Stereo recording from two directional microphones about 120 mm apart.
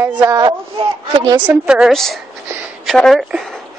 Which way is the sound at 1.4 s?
10° right (ahead or behind).